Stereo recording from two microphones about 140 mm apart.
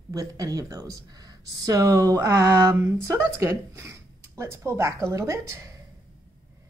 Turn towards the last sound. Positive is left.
turn(degrees=-25)  # may be behind; listen again after turning